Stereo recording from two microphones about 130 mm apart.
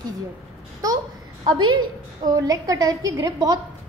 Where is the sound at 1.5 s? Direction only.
35° right (ahead or behind).